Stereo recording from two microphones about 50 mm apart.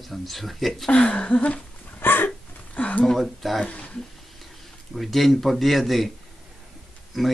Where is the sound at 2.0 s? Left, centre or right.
Left.